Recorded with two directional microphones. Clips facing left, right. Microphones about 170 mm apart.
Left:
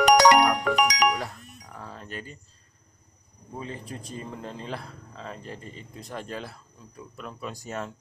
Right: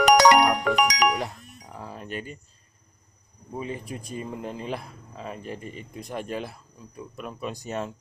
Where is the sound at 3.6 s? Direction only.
15° right (ahead or behind).